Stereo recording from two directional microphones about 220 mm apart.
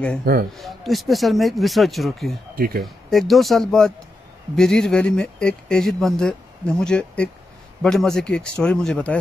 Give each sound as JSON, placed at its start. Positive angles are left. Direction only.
{"t": 0.2, "sound": "a man's voice", "side_deg": -45}
{"t": 0.6, "sound": "speech", "side_deg": 0}
{"t": 2.5, "sound": "speech", "side_deg": -40}
{"t": 2.8, "sound": "speech", "side_deg": 0}